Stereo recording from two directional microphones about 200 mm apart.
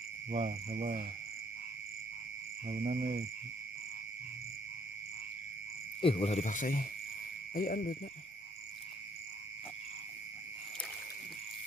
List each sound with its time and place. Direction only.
0.3 s cricket: 35° right (ahead or behind)
2.7 s cricket: 40° right (ahead or behind)
5.9 s insect: 25° left (ahead or behind); by 8.0 s 45° left (ahead or behind)